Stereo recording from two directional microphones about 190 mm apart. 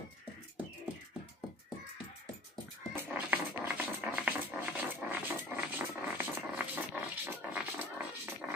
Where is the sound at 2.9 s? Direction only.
10° right (ahead or behind).